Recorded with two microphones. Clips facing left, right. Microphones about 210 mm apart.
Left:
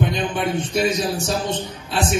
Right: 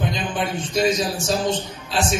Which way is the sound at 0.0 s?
60° left (ahead or behind).